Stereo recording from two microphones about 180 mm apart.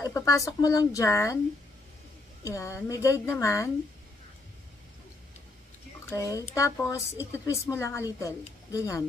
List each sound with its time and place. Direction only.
0.0 s speech: 15° left (ahead or behind)
2.4 s speech: 15° left (ahead or behind)
6.0 s speech: 15° left (ahead or behind)